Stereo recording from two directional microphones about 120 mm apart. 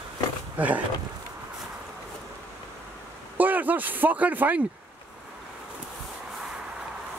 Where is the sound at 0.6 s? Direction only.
15° right (ahead or behind).